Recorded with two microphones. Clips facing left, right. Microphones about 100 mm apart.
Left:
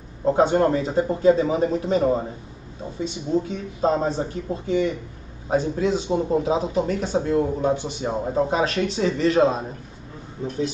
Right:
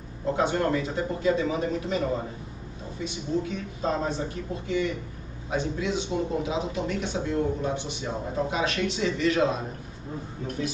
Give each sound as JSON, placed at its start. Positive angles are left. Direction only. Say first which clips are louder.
{"t": 0.2, "sound": "speech", "louder": "left 7 dB", "side_deg": 35}
{"t": 3.4, "sound": "speech", "louder": "left 6 dB", "side_deg": 35}